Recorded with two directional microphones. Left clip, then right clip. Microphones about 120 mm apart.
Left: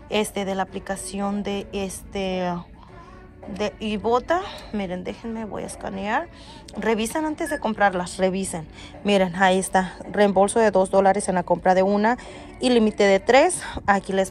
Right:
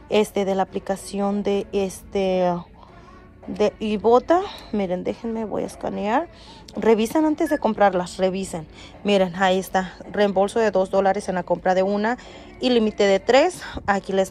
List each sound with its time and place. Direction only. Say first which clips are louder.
0.1 s a woman's voice: right 4 dB; 55° right (ahead or behind)
8.2 s a woman's voice: even; 30° right (ahead or behind)